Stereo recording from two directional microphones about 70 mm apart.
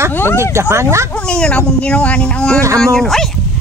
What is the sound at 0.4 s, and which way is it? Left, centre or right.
Speech, right.